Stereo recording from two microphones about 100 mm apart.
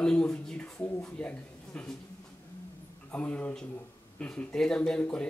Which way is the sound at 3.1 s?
15° left (ahead or behind).